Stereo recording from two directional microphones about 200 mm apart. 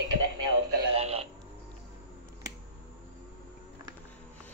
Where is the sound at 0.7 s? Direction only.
25° right (ahead or behind).